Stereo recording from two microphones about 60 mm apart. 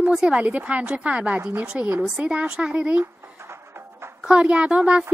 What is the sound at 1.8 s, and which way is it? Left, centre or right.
Speech, right.